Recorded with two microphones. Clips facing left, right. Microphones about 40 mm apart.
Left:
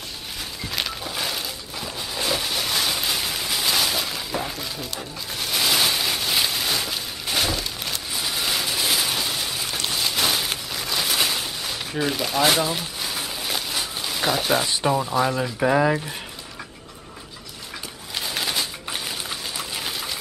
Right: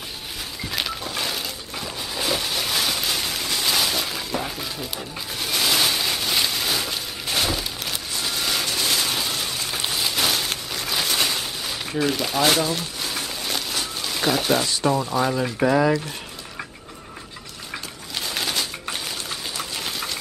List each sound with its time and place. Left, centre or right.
0.7 s a sound: centre
14.7 s speech: centre
15.0 s speech: centre
18.1 s typewriter: centre